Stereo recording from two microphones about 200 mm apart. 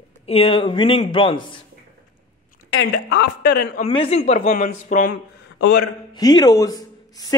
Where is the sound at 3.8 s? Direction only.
30° left (ahead or behind).